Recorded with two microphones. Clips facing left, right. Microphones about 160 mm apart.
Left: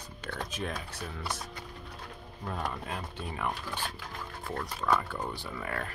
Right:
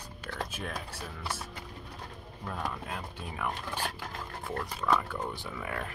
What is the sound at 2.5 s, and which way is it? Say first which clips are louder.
Speech: left 1 dB; 5° right (ahead or behind).